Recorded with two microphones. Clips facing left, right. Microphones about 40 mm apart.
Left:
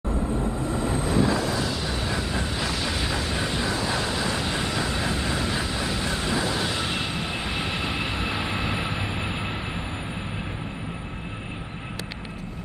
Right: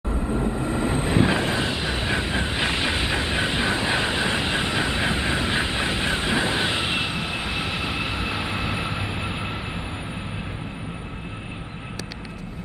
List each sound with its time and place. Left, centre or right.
0.1 s vehicle: right
7.1 s vehicle: centre